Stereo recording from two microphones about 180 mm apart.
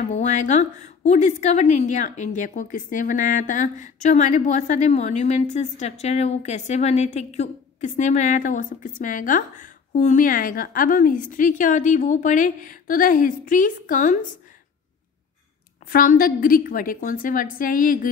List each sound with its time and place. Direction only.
0.0 s a woman's voice: 40° left (ahead or behind)
15.9 s a woman's voice: 50° left (ahead or behind)